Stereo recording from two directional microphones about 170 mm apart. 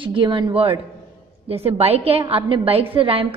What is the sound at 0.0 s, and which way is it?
A woman's voice, 30° right (ahead or behind).